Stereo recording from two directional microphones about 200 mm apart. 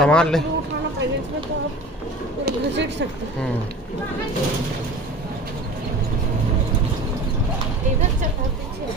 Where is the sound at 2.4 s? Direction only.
60° right (ahead or behind).